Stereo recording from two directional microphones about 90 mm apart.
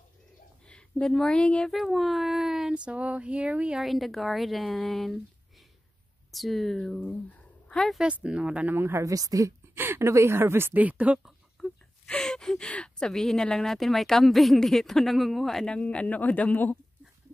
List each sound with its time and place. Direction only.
0.7 s speech: 10° left (ahead or behind)
1.7 s speech: centre (ahead or behind)
3.8 s speech: centre (ahead or behind)
6.3 s speech: centre (ahead or behind)
7.0 s a sound: 20° left (ahead or behind)
7.7 s speech: 5° left (ahead or behind)
8.0 s speech: 10° right (ahead or behind)
8.7 s speech: 25° right (ahead or behind)
9.8 s speech: 25° right (ahead or behind)
11.6 s speech: 5° left (ahead or behind)